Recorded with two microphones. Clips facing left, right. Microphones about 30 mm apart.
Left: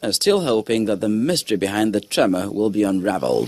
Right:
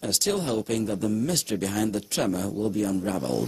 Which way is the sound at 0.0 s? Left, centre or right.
Left.